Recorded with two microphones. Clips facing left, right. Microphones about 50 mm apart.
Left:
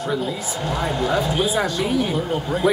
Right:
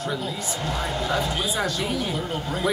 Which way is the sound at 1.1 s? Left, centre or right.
Centre.